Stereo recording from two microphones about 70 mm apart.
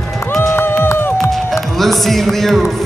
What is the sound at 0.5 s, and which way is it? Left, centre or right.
Run, left.